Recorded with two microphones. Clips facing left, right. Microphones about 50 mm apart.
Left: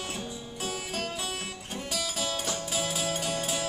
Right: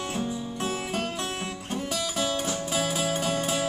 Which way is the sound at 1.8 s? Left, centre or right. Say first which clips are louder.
Right 3 dB; centre.